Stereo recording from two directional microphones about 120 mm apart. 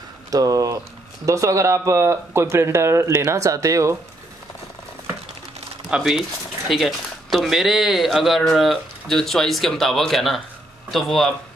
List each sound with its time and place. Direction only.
0.3 s speech: 30° right (ahead or behind)
5.9 s speech: 5° right (ahead or behind)